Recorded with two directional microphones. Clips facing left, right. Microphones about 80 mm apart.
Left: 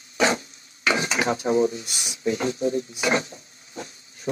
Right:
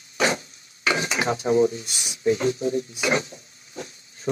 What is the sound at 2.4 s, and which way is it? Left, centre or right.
Speech, left.